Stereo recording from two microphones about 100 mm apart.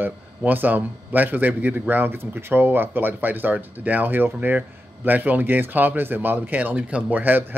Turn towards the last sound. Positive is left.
turn(degrees=-20)  # may be behind; listen again after turning